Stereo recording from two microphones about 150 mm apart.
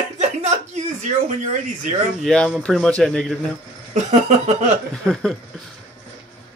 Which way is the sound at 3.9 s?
50° right (ahead or behind).